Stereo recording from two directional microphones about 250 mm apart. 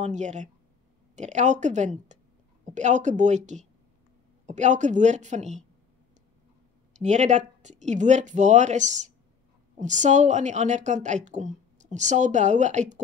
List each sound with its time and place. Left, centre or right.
0.0 s a woman's voice: right
6.9 s a woman's voice: right